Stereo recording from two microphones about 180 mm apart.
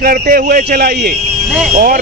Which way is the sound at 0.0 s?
55° right (ahead or behind).